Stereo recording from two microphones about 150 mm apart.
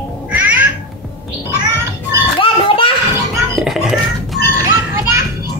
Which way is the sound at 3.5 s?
Centre (ahead or behind).